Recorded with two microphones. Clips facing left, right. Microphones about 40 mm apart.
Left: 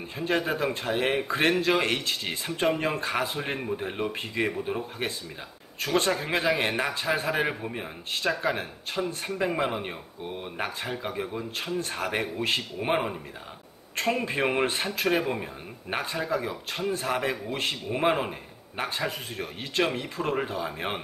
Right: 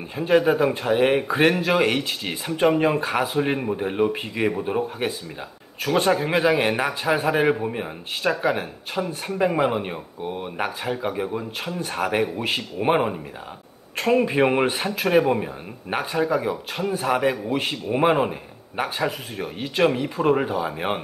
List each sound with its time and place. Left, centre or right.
0.1 s a man's voice: centre